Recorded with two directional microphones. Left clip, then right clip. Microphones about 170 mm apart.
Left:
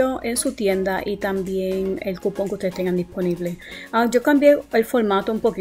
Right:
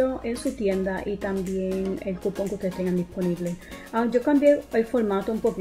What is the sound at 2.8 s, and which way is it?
Speech, 15° left (ahead or behind).